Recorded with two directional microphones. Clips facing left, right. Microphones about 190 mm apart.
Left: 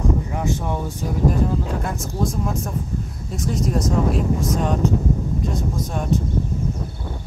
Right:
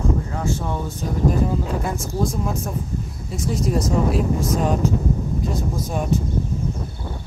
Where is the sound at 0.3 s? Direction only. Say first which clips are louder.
Left 1 dB; 15° left (ahead or behind).